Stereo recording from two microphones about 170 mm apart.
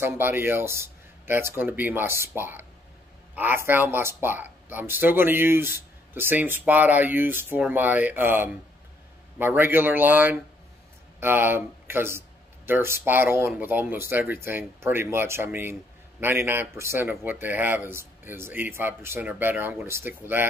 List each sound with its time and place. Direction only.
0.0 s speech: 10° right (ahead or behind)